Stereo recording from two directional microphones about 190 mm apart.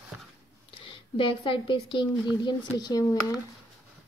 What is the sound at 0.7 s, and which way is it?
A woman's voice, 30° left (ahead or behind).